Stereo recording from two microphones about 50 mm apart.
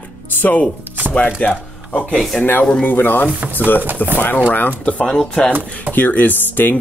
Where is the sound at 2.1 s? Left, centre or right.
Centre.